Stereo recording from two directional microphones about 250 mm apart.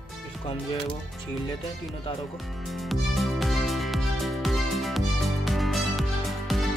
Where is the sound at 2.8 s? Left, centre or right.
Centre.